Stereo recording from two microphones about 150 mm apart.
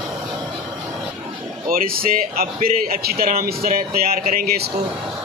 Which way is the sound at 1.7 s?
75° right (ahead or behind).